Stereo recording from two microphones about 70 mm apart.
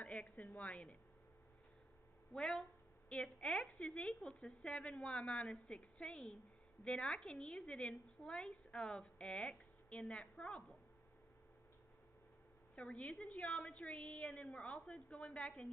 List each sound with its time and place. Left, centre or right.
0.0 s a sound: left
2.3 s a woman's voice: centre
12.8 s a woman's voice: centre